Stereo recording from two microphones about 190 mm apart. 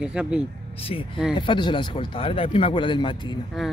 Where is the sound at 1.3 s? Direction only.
25° left (ahead or behind).